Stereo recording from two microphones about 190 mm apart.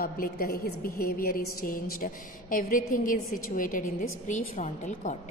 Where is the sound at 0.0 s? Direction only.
50° left (ahead or behind).